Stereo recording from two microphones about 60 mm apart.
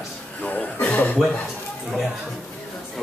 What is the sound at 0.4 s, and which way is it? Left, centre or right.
Speech, left.